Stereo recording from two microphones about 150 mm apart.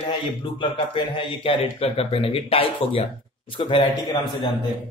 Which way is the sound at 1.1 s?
35° left (ahead or behind).